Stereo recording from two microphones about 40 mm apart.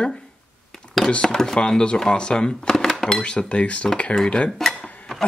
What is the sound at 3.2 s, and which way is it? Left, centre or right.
Speech, left.